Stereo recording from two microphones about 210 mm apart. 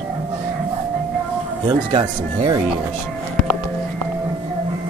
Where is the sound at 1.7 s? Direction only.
20° right (ahead or behind).